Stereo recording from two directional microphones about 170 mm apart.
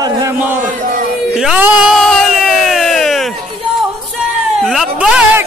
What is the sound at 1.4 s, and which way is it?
Speech, 10° right (ahead or behind).